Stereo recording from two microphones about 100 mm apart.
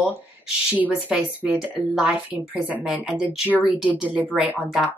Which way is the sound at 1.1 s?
10° right (ahead or behind).